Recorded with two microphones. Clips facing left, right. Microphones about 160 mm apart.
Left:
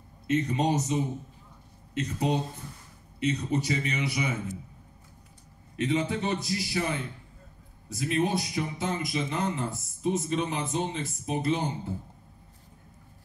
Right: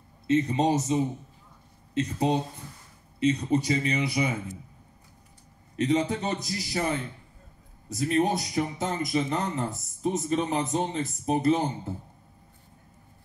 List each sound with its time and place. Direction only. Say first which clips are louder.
0.3 s speech: right 3 dB; 30° right (ahead or behind)
2.0 s a man's voice: right 3 dB; 30° right (ahead or behind)
5.8 s a man's voice: right 3 dB; 40° right (ahead or behind)